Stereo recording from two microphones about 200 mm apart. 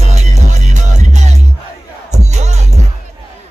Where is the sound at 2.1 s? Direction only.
35° right (ahead or behind).